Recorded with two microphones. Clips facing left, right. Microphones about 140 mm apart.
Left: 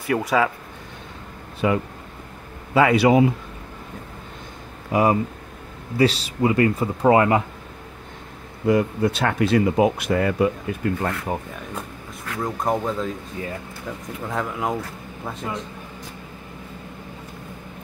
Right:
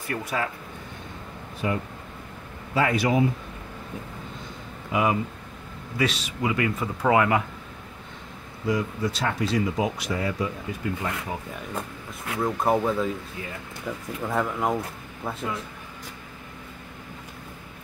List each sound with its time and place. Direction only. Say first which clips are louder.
0.0 s speech: left 8 dB; 90° left
1.6 s speech: left 6 dB; 90° left
2.7 s a man's voice: left 7 dB; 75° left (ahead or behind)
4.9 s speech: left 5 dB; 40° left (ahead or behind)
8.6 s speech: left 7 dB; 60° left (ahead or behind)
12.4 s speech: right 1 dB; 5° right (ahead or behind)
14.2 s speech: right 1 dB; centre (ahead or behind)